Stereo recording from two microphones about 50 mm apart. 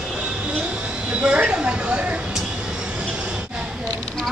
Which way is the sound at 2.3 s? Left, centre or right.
Centre.